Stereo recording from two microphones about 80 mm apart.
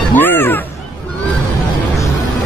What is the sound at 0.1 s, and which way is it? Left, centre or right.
Music, left.